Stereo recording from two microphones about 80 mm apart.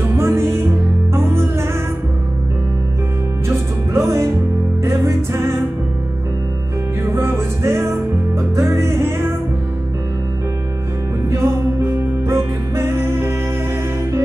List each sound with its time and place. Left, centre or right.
0.1 s music: right
3.4 s music: right
7.1 s music: right
11.2 s music: right